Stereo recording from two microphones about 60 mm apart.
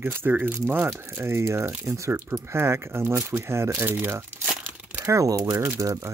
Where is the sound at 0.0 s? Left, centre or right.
Right.